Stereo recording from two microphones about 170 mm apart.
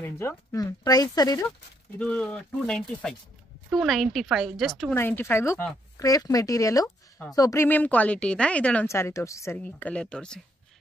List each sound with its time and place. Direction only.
0.0 s speech: 15° left (ahead or behind)
2.0 s a woman's voice: 5° left (ahead or behind)
4.9 s speech: 15° left (ahead or behind)